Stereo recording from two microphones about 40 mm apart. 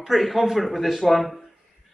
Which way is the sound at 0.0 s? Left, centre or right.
Centre.